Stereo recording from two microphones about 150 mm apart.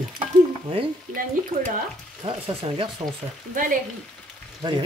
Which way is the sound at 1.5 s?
40° right (ahead or behind).